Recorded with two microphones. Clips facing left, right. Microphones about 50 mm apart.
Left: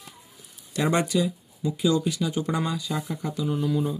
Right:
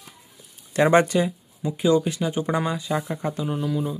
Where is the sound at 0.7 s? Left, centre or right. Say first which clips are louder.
Right 6 dB; right.